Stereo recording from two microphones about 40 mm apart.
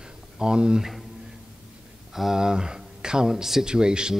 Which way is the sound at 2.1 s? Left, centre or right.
Centre.